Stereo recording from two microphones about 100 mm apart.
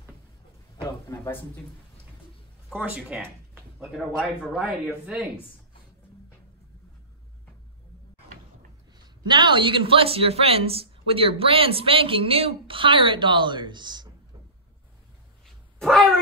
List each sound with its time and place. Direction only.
0.8 s a man's voice: 25° left (ahead or behind)
2.7 s speech: 15° right (ahead or behind)
3.8 s speech: centre (ahead or behind)
8.9 s a man's voice: 50° right (ahead or behind)
15.4 s dog: 5° left (ahead or behind)